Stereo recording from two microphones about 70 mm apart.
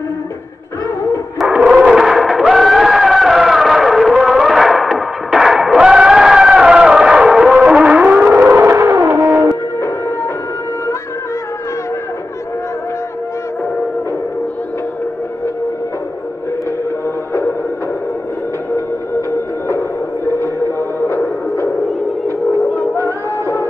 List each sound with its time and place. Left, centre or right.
1.7 s a sound: centre
7.5 s music: centre
8.5 s a sound: right
9.5 s music: left
17.3 s music: left
20.2 s music: left